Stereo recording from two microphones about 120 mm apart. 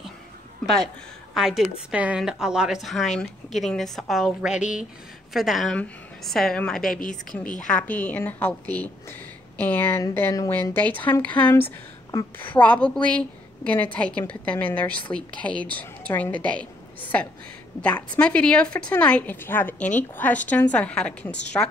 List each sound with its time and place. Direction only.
1.3 s a woman's voice: centre (ahead or behind)
21.3 s a woman's voice: 75° left (ahead or behind)